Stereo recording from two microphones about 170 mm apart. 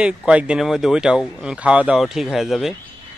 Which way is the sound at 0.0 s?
5° right (ahead or behind).